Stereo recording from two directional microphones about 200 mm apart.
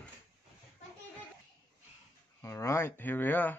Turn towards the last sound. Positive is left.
turn(degrees=10)  # may be behind; listen again after turning